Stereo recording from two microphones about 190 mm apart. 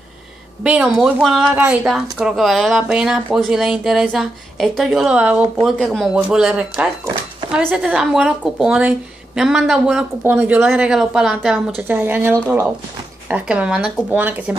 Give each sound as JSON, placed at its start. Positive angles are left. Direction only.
{"t": 0.7, "sound": "speech", "side_deg": -5}